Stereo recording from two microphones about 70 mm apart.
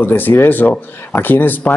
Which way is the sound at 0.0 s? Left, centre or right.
Left.